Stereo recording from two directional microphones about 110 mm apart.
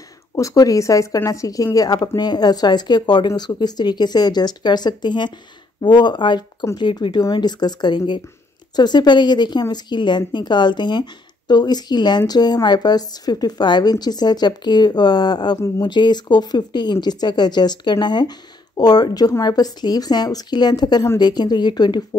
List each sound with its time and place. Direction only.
0.4 s a woman's voice: 30° left (ahead or behind)